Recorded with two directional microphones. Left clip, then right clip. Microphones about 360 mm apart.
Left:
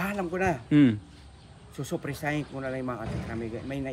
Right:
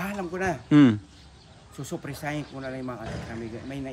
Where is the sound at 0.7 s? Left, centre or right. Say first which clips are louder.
Right 5 dB; centre.